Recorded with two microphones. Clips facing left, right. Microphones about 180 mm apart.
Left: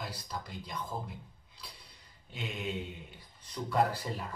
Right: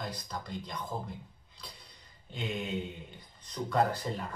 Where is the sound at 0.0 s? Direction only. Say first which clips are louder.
Right 2 dB; 5° left (ahead or behind).